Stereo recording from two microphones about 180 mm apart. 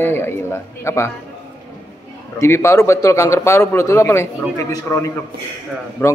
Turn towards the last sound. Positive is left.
turn(degrees=15)  # may be behind; listen again after turning